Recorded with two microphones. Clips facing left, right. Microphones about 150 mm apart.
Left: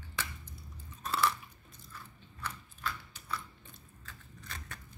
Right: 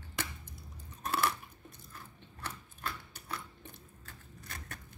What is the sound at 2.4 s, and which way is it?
Mechanisms, 50° right (ahead or behind).